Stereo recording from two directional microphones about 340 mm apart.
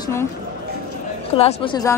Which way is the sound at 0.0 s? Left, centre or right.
Centre.